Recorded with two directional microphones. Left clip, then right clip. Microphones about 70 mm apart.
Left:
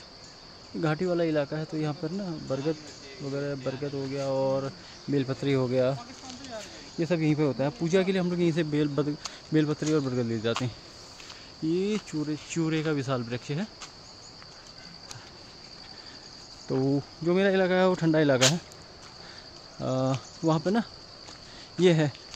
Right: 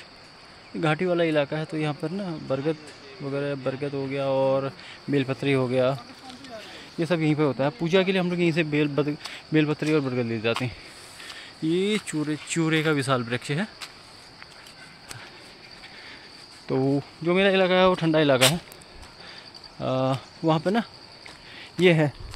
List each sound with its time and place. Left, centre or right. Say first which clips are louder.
0.9 s speech: right 4 dB; right
3.3 s speech: right 4 dB; right
5.1 s speech: right 3 dB; right
7.0 s speech: right 3 dB; centre
11.7 s speech: right 4 dB; right
16.6 s speech: right 3 dB; centre
17.3 s speech: right 4 dB; centre
19.8 s speech: right 4 dB; centre